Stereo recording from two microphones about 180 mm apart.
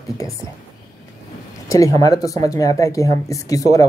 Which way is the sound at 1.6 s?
20° left (ahead or behind).